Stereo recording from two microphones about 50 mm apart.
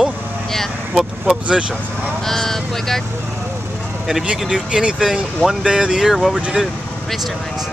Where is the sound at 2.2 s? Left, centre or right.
Centre.